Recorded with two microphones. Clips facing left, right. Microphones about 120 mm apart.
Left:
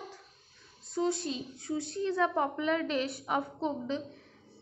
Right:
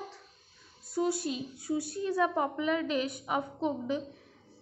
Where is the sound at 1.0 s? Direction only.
10° right (ahead or behind).